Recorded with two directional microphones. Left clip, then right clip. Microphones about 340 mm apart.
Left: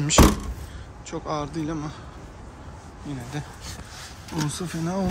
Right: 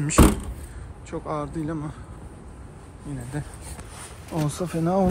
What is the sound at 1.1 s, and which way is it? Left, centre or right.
Speech, centre.